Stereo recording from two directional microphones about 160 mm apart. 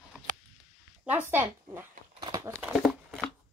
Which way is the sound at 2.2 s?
25° right (ahead or behind).